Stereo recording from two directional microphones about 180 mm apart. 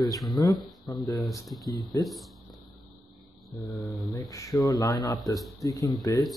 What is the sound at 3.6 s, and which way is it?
Speech, 20° left (ahead or behind).